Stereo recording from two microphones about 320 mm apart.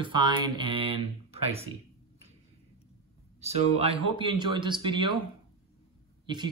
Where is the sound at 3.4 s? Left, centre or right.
Centre.